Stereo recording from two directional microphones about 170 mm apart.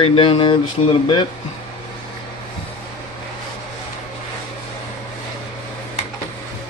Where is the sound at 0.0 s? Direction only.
30° left (ahead or behind).